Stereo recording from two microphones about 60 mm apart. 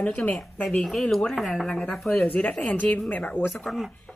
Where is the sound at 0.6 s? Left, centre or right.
Centre.